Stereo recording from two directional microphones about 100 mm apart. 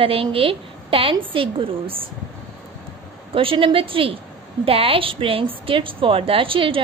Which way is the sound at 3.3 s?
60° right (ahead or behind).